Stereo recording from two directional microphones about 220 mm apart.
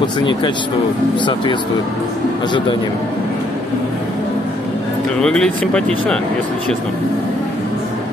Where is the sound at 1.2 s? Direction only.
20° left (ahead or behind).